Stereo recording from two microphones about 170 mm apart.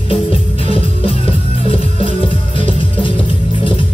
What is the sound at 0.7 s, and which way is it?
Music, 35° left (ahead or behind).